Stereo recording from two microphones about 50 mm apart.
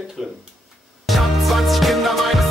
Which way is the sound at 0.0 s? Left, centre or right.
Centre.